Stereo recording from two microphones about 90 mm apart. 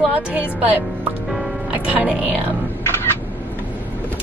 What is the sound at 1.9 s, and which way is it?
Speech, 15° right (ahead or behind).